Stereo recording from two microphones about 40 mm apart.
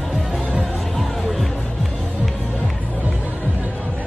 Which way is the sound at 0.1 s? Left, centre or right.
Centre.